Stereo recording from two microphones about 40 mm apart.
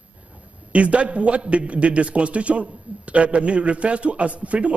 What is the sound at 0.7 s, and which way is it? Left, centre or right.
Speech, right.